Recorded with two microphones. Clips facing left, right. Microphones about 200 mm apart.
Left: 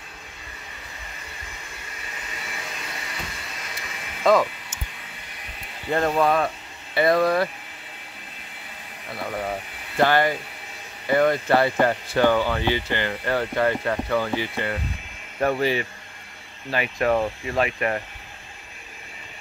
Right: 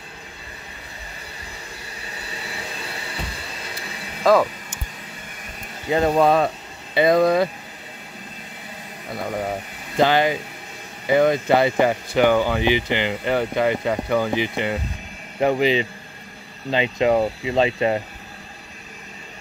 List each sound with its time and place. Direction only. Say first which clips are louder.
3.2 s vacuum cleaner: right 3 dB; 30° right (ahead or behind)
4.2 s speech: right 2 dB; 5° right (ahead or behind)
5.9 s speech: right 3 dB; 15° right (ahead or behind)
6.1 s speech: right 4 dB; 30° right (ahead or behind)
9.9 s speech: right 2 dB; 15° right (ahead or behind)